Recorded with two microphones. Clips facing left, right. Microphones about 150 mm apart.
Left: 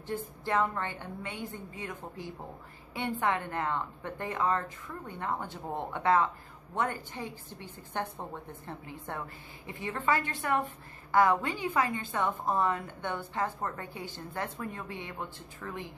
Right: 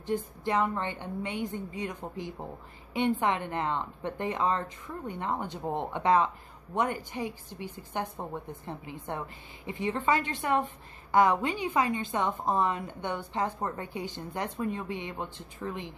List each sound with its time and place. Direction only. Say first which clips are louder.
0.0 s a woman's voice: right 5 dB; 15° right (ahead or behind)